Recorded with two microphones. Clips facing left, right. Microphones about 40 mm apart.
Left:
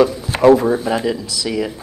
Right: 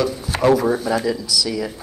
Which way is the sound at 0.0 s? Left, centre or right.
Left.